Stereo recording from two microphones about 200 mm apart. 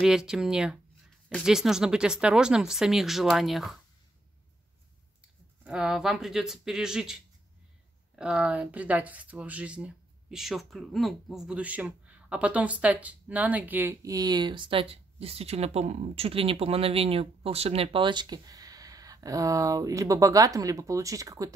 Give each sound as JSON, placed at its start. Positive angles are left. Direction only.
{"t": 0.0, "sound": "speech", "side_deg": -5}
{"t": 5.6, "sound": "speech", "side_deg": -5}
{"t": 8.2, "sound": "speech", "side_deg": -5}